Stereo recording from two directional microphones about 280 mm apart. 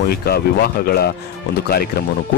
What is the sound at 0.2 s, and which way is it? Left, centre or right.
Speech, left.